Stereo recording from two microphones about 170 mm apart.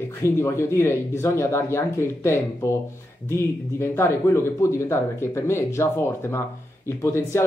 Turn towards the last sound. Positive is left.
turn(degrees=15)  # may be behind; listen again after turning